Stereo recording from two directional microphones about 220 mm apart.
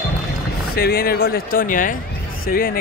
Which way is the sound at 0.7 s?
45° left (ahead or behind).